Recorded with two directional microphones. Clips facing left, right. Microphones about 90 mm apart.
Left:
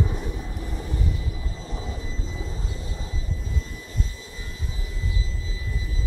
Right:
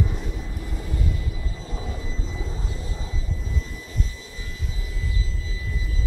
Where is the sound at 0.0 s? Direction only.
20° left (ahead or behind).